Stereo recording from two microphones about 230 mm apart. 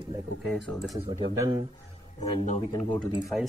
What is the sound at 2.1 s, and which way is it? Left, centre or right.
Speech, left.